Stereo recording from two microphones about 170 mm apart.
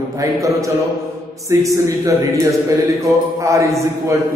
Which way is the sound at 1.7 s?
20° right (ahead or behind).